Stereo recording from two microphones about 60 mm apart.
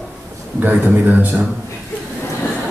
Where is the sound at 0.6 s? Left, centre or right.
Right.